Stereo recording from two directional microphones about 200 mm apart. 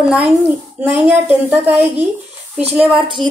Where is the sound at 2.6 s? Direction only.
30° right (ahead or behind).